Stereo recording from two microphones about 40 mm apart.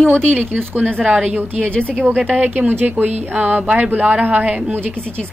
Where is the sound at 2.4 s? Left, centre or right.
Right.